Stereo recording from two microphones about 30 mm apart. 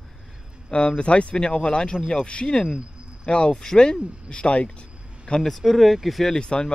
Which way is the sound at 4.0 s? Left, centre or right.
Right.